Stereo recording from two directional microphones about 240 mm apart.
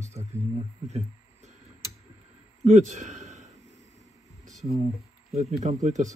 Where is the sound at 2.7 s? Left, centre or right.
Right.